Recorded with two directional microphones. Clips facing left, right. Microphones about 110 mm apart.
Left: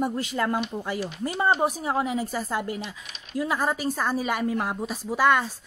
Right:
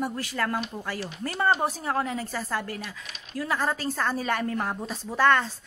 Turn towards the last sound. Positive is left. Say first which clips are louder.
# even
turn(degrees=10)  # may be behind; listen again after turning